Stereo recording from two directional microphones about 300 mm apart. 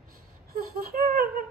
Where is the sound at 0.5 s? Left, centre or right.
Right.